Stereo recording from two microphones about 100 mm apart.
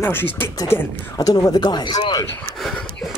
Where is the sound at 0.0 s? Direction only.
20° left (ahead or behind).